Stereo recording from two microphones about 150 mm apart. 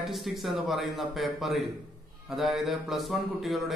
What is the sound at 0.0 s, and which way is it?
A man's voice, centre (ahead or behind).